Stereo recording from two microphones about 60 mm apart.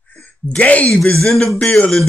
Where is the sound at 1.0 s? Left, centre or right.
Centre.